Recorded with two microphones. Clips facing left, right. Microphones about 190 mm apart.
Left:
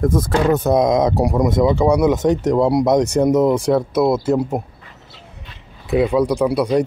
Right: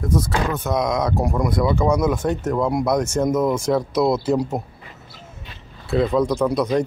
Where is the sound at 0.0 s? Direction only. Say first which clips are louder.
Left 5 dB; 45° left (ahead or behind); by 3.8 s 10° left (ahead or behind).